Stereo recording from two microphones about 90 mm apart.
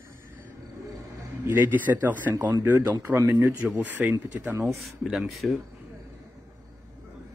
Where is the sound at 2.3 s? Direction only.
45° right (ahead or behind).